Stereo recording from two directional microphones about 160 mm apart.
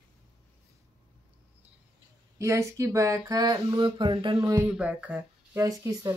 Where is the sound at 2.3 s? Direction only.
20° right (ahead or behind).